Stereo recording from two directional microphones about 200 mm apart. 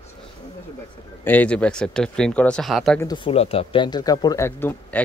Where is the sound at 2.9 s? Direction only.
20° left (ahead or behind).